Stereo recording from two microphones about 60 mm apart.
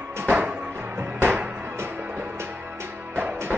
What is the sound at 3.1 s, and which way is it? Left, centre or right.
Music, right.